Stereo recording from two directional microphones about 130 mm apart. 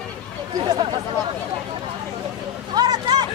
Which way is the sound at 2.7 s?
30° right (ahead or behind).